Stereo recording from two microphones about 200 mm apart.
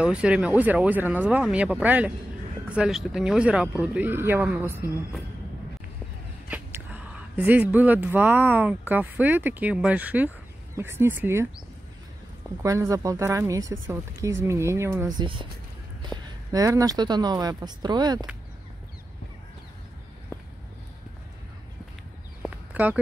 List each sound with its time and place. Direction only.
0.0 s speech: 5° right (ahead or behind)
6.5 s speech: 10° right (ahead or behind)
12.6 s speech: 15° right (ahead or behind)
22.4 s a sound: 10° right (ahead or behind)